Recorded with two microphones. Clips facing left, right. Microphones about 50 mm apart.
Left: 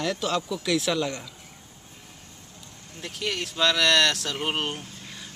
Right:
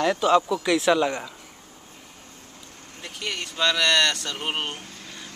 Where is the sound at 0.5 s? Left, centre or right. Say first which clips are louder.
Right 5 dB; centre.